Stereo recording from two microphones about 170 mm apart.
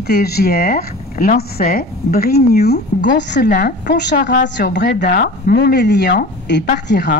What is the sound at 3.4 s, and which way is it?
Speech, 55° left (ahead or behind).